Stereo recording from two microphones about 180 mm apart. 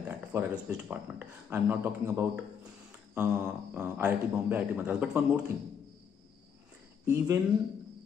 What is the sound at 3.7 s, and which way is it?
Speech, 10° right (ahead or behind).